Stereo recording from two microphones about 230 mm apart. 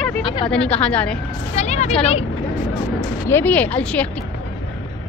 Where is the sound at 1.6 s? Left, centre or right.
Left.